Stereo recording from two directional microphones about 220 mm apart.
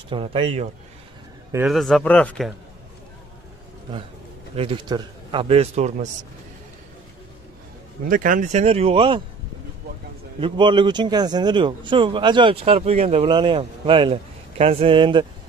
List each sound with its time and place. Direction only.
0.1 s speech: 25° right (ahead or behind)
1.7 s speech: centre (ahead or behind)
4.6 s speech: 20° right (ahead or behind)
8.0 s speech: 40° right (ahead or behind)
10.4 s speech: 20° right (ahead or behind)